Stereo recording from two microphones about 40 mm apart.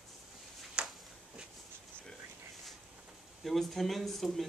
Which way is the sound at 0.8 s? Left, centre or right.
Right.